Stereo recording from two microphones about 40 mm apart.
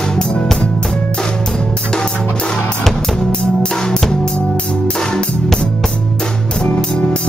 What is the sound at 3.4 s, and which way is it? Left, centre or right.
Music, left.